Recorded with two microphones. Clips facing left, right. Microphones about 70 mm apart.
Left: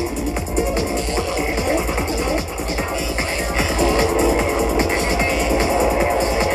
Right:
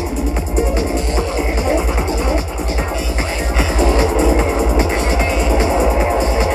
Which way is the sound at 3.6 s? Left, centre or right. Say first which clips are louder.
Right 2 dB; right.